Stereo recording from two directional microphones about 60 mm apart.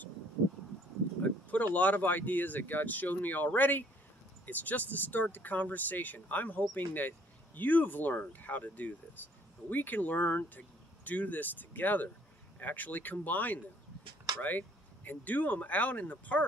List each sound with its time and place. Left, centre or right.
1.2 s speech: left
15.0 s speech: left